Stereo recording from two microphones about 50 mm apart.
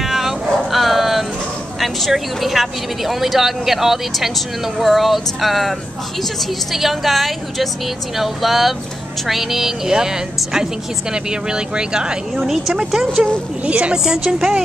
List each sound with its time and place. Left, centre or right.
0.0 s dog: centre
1.8 s a woman's voice: centre
13.7 s a woman's voice: right
13.9 s a woman's voice: centre